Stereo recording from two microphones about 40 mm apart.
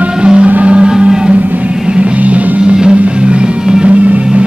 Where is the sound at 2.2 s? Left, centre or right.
Right.